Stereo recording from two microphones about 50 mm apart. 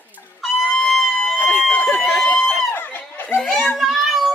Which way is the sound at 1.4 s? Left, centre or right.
Left.